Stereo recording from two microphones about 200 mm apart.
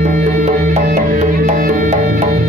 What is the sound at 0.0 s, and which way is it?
Music, 40° right (ahead or behind).